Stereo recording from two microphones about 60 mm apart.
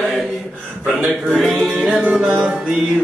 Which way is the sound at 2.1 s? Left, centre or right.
Centre.